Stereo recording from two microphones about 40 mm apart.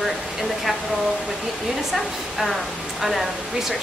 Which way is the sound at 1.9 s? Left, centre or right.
Centre.